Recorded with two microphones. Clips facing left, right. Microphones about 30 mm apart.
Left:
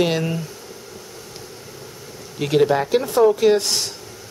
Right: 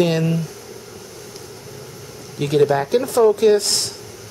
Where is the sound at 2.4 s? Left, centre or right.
Centre.